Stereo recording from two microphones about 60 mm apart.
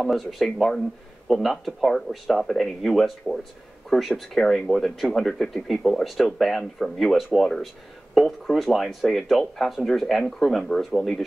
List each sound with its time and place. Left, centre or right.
0.0 s speech: centre
4.4 s speech: centre